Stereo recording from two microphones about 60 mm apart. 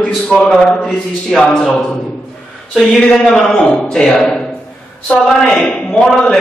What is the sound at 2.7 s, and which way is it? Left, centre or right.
Speech, centre.